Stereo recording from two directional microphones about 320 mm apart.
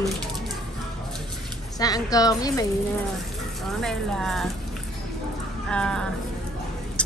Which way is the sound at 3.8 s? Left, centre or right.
Centre.